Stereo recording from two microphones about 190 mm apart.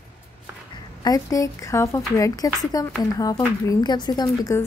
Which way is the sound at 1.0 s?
20° left (ahead or behind).